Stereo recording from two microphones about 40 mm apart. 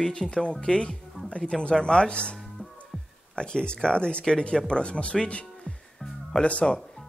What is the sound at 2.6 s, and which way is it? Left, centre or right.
Music, left.